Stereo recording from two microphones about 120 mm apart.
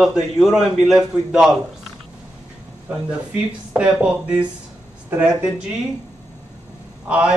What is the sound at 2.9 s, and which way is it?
Speech, 15° right (ahead or behind).